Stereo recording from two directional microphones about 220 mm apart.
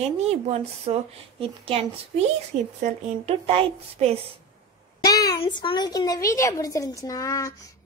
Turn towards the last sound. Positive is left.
turn(degrees=15)  # may be behind; listen again after turning